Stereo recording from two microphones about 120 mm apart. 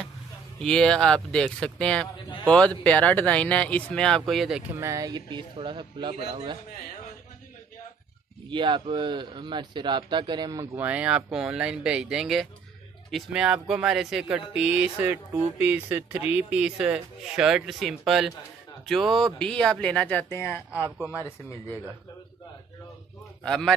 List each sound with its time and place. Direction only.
0.6 s speech: 5° left (ahead or behind)
4.7 s a man's voice: 25° right (ahead or behind); by 6.6 s 45° right (ahead or behind)
8.5 s a man's voice: 40° right (ahead or behind)
10.8 s speech: 10° right (ahead or behind); by 20.6 s 20° left (ahead or behind)
23.4 s a man's voice: 5° left (ahead or behind)